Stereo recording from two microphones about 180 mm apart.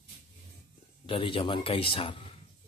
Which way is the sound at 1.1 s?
30° left (ahead or behind).